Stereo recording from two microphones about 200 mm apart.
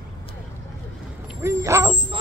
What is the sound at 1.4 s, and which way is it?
Speech, 15° right (ahead or behind).